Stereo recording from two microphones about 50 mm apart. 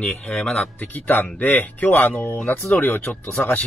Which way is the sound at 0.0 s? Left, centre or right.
Left.